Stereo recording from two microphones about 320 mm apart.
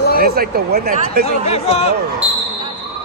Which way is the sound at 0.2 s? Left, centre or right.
Right.